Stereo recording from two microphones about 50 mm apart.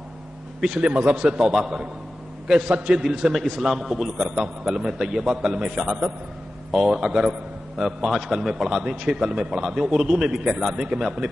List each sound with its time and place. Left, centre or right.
0.6 s a man's voice: centre
2.9 s a man's voice: centre
6.7 s a man's voice: centre